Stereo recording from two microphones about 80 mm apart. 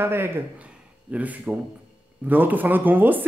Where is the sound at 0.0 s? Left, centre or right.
Right.